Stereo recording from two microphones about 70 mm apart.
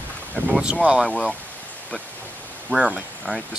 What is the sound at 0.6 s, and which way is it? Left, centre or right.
Speech, centre.